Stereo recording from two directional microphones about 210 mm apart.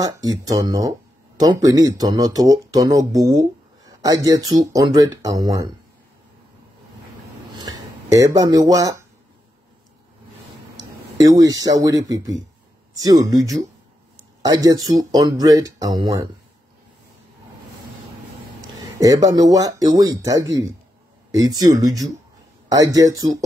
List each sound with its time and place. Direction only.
0.5 s speech: 15° right (ahead or behind)
7.5 s speech: 20° right (ahead or behind)
11.1 s speech: 15° right (ahead or behind)
18.9 s speech: 15° right (ahead or behind)